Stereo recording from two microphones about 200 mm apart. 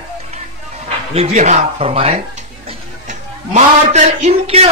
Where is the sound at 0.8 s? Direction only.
30° right (ahead or behind).